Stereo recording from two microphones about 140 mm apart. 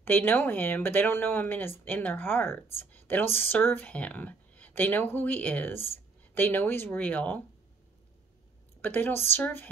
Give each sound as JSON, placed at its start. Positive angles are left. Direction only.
{"t": 0.0, "sound": "speech", "side_deg": 15}
{"t": 8.8, "sound": "speech", "side_deg": 15}